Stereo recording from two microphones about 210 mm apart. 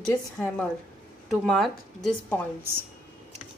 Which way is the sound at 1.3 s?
Centre (ahead or behind).